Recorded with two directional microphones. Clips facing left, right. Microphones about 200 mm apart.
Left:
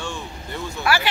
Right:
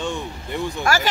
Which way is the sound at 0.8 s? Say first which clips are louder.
Even; 45° right (ahead or behind).